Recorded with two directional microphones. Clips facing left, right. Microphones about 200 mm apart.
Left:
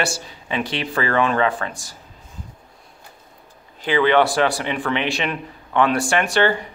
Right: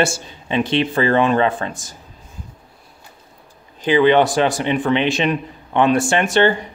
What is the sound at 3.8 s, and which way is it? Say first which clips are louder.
Speech: right 3 dB; 20° right (ahead or behind).